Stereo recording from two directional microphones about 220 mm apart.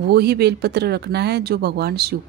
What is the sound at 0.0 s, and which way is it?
Speech, 45° right (ahead or behind).